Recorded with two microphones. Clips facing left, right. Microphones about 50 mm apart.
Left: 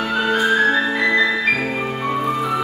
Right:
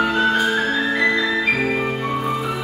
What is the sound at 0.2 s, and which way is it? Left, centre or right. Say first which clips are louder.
Music: left 2 dB; centre.